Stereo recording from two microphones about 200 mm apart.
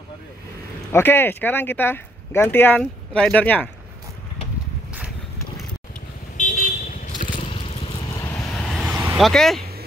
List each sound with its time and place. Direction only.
0.9 s speech: 10° left (ahead or behind)
6.3 s vehicle: 40° left (ahead or behind)
7.4 s vehicle: 30° left (ahead or behind)
8.1 s vehicle: 15° left (ahead or behind)
8.8 s vehicle: 10° right (ahead or behind)